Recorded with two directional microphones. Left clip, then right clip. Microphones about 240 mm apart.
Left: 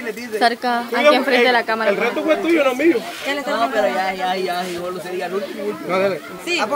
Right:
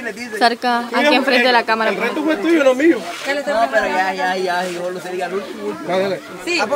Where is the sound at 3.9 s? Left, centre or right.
Right.